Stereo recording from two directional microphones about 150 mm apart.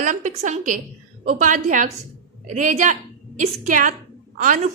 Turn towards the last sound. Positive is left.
turn(degrees=-55)  # may be behind; listen again after turning